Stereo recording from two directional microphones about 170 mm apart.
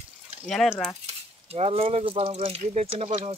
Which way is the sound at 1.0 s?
35° right (ahead or behind).